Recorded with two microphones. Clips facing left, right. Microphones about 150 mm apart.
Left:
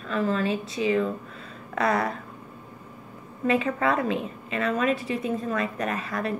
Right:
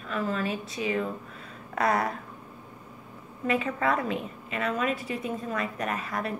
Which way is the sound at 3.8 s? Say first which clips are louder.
Left 3 dB; 30° left (ahead or behind).